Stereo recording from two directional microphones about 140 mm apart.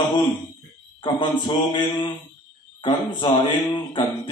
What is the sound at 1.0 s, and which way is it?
A man's voice, 35° left (ahead or behind).